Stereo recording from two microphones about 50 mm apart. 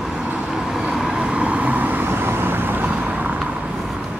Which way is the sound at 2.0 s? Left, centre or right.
Right.